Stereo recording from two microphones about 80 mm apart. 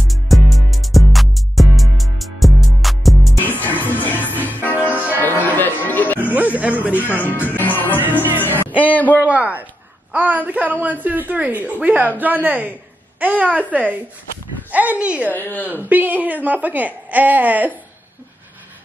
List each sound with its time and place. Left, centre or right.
0.1 s music: centre
3.5 s music: left
6.3 s music: centre
7.2 s music: left
7.9 s music: right
8.4 s music: left
9.2 s a sound: centre
10.1 s a woman's voice: right
15.3 s speech: left
15.7 s a woman's voice: right